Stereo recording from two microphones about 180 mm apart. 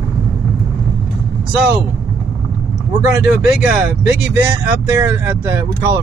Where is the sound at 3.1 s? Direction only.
5° right (ahead or behind).